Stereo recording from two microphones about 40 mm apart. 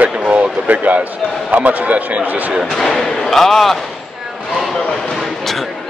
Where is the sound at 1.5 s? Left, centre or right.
Right.